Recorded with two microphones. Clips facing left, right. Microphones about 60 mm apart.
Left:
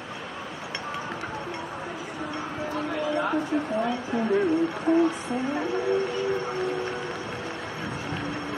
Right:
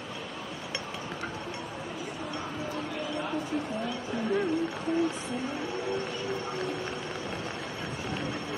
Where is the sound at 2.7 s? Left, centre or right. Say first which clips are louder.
Left 10 dB; left.